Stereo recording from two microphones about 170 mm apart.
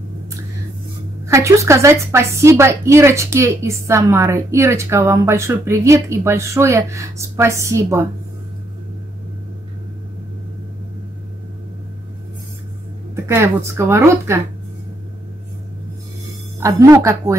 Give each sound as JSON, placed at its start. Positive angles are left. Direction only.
{"t": 1.2, "sound": "speech", "side_deg": -15}
{"t": 13.1, "sound": "speech", "side_deg": -15}
{"t": 16.5, "sound": "speech", "side_deg": -20}